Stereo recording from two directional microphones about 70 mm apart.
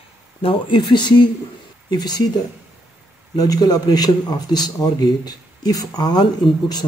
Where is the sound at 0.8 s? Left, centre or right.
Left.